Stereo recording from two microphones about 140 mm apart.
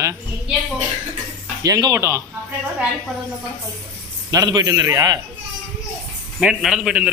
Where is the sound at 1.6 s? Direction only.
25° right (ahead or behind).